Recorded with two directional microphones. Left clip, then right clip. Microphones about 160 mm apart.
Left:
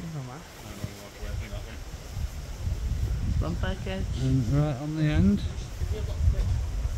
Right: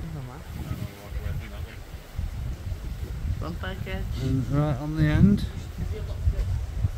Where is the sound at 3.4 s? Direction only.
25° left (ahead or behind).